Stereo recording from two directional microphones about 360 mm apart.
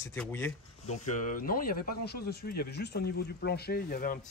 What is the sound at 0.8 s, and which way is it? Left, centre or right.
Speech, left.